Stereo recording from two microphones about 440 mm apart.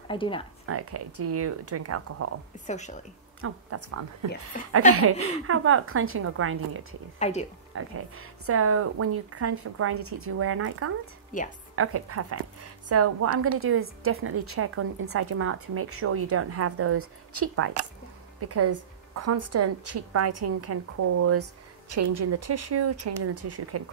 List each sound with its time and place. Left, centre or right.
0.1 s a woman's voice: centre
0.7 s a woman's voice: right
2.6 s a woman's voice: centre
3.3 s a woman's voice: right
7.2 s a woman's voice: centre
7.7 s a woman's voice: right
11.3 s a woman's voice: centre
11.7 s a woman's voice: right